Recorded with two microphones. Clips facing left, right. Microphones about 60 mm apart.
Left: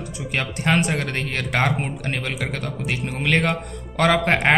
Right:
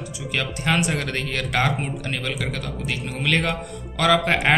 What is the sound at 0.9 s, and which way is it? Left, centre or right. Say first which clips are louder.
A man's voice: left 1 dB; left.